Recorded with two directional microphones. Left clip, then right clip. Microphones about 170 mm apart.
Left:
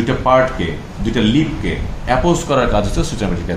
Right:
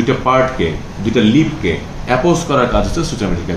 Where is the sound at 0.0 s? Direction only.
30° left (ahead or behind).